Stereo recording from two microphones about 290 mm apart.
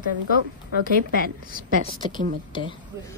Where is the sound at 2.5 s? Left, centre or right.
Centre.